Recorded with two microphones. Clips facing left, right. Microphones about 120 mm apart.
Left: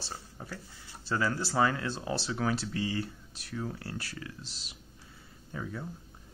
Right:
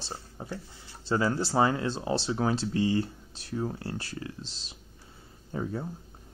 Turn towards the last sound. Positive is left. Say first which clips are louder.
# right 6 dB
turn(degrees=-35)  # may be behind; listen again after turning